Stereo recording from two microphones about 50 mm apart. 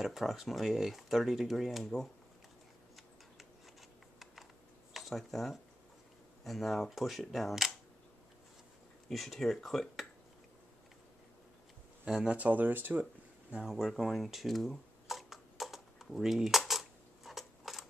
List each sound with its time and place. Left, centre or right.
0.0 s speech: centre
4.9 s speech: centre
9.1 s speech: centre
12.3 s speech: right
13.7 s a sound: centre